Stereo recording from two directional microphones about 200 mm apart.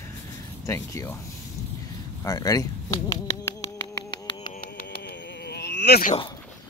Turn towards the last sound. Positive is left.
turn(degrees=55)  # may be behind; listen again after turning